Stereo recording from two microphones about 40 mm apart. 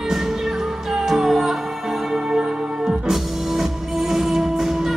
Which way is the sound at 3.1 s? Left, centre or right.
Centre.